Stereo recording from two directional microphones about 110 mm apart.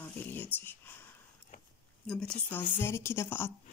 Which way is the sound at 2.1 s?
10° left (ahead or behind).